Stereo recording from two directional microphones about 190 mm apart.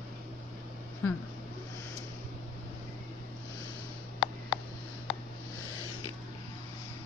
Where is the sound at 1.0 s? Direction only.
10° left (ahead or behind).